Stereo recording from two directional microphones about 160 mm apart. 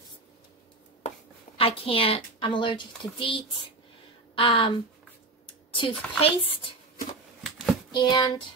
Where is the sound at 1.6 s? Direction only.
35° left (ahead or behind).